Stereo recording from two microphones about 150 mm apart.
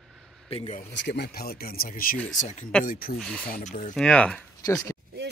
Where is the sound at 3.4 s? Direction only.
70° left (ahead or behind).